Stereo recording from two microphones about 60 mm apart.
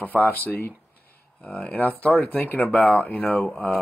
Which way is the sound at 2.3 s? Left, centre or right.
Left.